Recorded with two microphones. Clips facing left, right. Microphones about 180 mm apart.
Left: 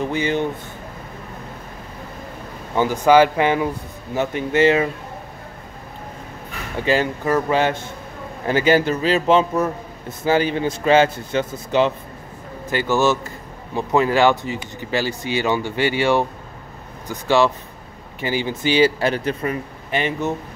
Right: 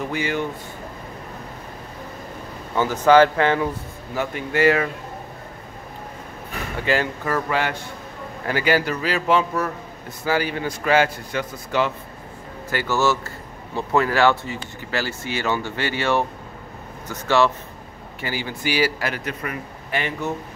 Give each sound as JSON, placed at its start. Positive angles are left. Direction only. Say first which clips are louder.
{"t": 0.1, "sound": "a man's voice", "louder": "left 3 dB", "side_deg": 20}
{"t": 2.7, "sound": "a man's voice", "louder": "left 1 dB", "side_deg": 15}
{"t": 6.8, "sound": "a man's voice", "louder": "left 3 dB", "side_deg": 20}